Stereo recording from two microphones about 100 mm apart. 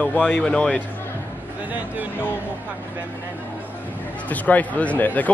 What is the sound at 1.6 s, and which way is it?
Speech, 15° right (ahead or behind).